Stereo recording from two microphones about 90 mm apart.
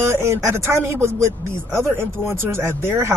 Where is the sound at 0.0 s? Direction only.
30° right (ahead or behind).